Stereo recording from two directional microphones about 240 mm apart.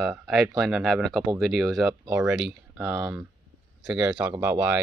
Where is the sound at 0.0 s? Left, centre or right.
Centre.